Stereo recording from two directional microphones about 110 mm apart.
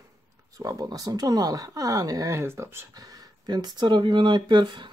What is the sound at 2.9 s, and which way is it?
Speech, 35° right (ahead or behind).